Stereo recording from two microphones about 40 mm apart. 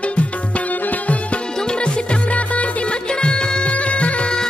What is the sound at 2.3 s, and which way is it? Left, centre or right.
Music, left.